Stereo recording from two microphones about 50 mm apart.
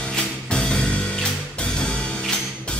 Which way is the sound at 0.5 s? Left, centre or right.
Centre.